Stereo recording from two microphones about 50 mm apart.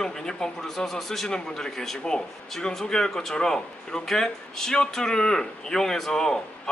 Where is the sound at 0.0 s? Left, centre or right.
Centre.